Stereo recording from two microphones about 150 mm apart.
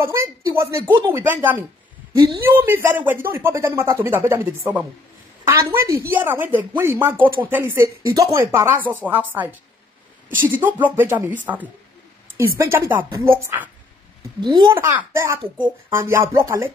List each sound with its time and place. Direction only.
0.0 s speech: 20° right (ahead or behind)
5.9 s speech: 20° right (ahead or behind)
14.4 s a child's voice: 30° right (ahead or behind)
14.8 s speech: 20° right (ahead or behind)